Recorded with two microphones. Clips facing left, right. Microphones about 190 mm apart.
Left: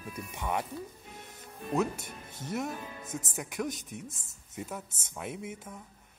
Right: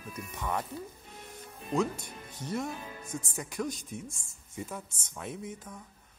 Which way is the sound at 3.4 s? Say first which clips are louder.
Even; centre (ahead or behind).